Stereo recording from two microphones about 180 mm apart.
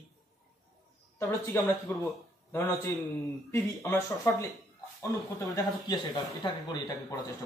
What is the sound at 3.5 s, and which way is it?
Speech, 15° left (ahead or behind).